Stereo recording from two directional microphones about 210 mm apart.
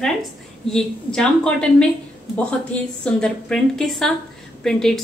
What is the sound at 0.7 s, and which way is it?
A woman's voice, 5° left (ahead or behind).